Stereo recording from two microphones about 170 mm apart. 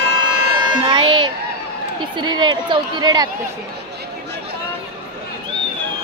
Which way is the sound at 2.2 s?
25° right (ahead or behind).